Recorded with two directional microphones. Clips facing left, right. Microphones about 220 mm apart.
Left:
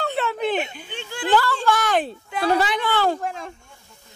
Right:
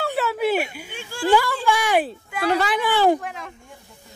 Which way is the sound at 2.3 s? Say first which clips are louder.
Left 1 dB; 30° left (ahead or behind).